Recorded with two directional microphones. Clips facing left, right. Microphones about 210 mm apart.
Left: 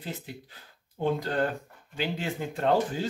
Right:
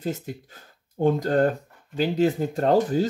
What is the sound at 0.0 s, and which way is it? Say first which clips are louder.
Speech: right 9 dB; 45° right (ahead or behind).